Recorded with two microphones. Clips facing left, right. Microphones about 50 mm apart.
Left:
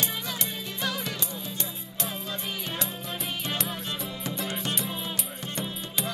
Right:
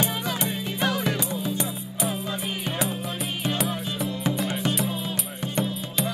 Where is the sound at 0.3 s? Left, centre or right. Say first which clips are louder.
Right 6 dB; right.